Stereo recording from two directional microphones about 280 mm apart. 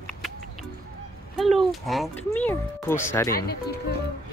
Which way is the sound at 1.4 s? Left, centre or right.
Centre.